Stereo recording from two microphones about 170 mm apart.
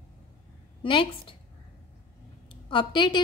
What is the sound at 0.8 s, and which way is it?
Speech, 30° left (ahead or behind).